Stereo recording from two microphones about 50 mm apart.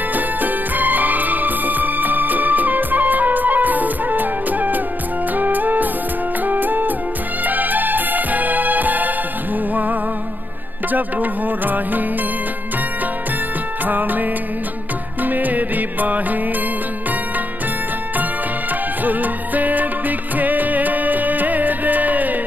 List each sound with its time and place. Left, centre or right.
0.1 s music: right
10.9 s music: right
13.8 s music: right
15.2 s music: right
19.0 s music: right